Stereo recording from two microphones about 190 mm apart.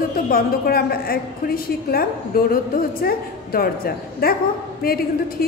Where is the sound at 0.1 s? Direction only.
50° left (ahead or behind).